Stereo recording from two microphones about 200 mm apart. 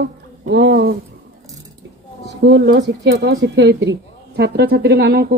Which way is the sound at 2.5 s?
65° right (ahead or behind).